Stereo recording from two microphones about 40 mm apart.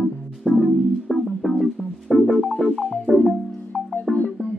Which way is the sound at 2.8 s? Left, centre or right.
Centre.